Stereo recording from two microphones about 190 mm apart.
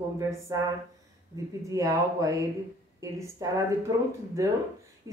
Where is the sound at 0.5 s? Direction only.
20° right (ahead or behind).